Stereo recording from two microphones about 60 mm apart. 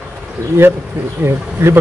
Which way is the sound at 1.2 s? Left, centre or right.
Right.